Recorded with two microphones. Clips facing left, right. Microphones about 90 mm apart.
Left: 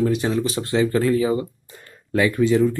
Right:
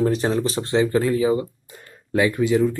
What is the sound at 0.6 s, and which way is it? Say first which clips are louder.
Speech: even; 20° right (ahead or behind).